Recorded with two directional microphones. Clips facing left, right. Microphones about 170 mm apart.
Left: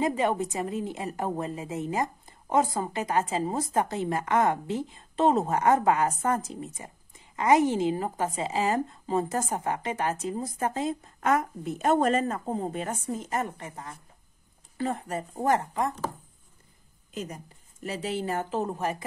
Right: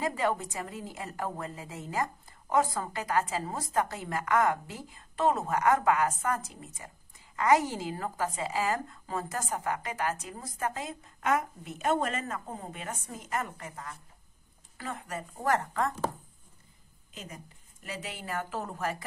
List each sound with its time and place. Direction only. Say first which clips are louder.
0.0 s a woman's voice: left 4 dB; 20° left (ahead or behind)
11.2 s a woman's voice: left 4 dB; 40° left (ahead or behind)
15.5 s speech: left 1 dB; 15° left (ahead or behind)
17.1 s a woman's voice: left 9 dB; 40° left (ahead or behind)
17.8 s a woman's voice: left 9 dB; 30° left (ahead or behind)